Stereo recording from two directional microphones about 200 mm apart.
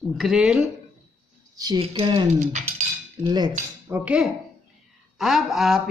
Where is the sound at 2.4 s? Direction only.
35° right (ahead or behind).